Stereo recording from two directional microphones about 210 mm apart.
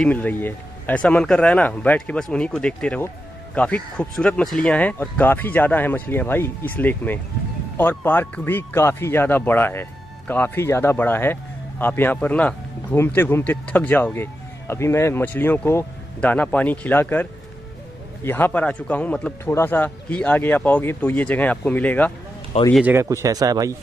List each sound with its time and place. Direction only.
0.0 s speech: 5° left (ahead or behind)
22.8 s speech: 10° right (ahead or behind)